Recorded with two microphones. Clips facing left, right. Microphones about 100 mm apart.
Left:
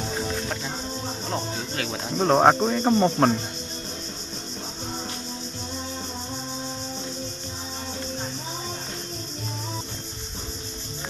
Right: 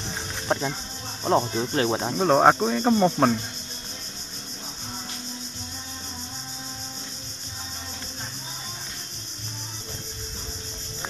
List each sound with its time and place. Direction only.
1.3 s speech: 35° right (ahead or behind)
2.1 s speech: centre (ahead or behind)